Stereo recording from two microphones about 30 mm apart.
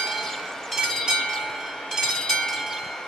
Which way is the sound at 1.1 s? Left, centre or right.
Centre.